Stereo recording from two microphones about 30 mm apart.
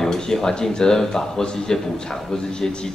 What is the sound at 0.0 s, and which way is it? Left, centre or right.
A man's voice, centre.